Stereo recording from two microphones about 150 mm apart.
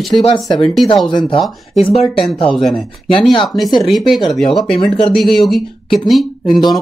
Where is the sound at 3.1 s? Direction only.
35° left (ahead or behind).